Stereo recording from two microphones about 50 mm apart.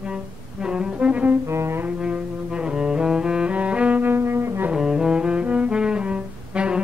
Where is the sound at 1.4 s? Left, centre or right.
Right.